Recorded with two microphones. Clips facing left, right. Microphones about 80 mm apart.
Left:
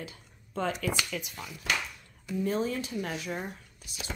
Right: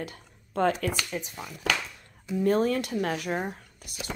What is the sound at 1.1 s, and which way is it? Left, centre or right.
Speech, right.